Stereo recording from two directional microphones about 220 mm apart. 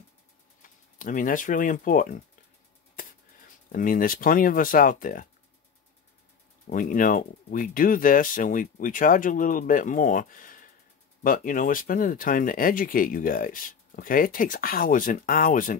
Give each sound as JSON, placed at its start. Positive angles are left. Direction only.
{"t": 0.6, "sound": "speech", "side_deg": 40}
{"t": 3.7, "sound": "speech", "side_deg": 40}
{"t": 6.7, "sound": "speech", "side_deg": 40}